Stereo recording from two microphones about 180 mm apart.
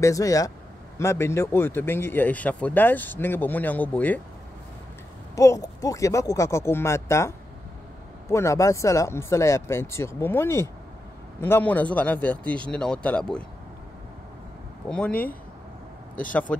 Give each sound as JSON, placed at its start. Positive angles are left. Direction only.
{"t": 0.0, "sound": "a man's voice", "side_deg": 20}
{"t": 5.3, "sound": "a man's voice", "side_deg": 15}
{"t": 14.9, "sound": "a man's voice", "side_deg": 5}